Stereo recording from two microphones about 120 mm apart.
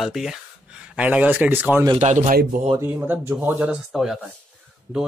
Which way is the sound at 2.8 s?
15° right (ahead or behind).